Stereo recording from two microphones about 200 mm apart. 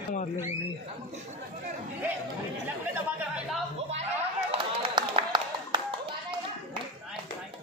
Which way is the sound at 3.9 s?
30° right (ahead or behind).